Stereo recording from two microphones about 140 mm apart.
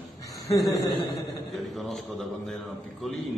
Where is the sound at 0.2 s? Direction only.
25° left (ahead or behind).